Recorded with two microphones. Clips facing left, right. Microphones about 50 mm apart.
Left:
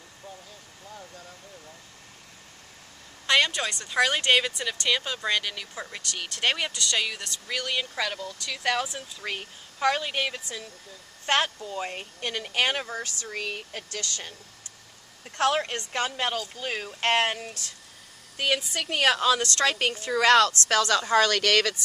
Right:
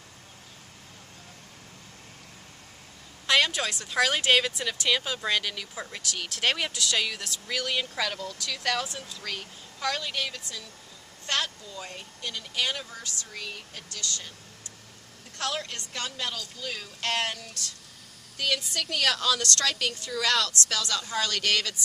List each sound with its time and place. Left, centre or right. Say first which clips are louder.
3.3 s speech: left 1 dB; centre
9.2 s a woman's voice: left 4 dB; left
15.3 s a woman's voice: left 8 dB; left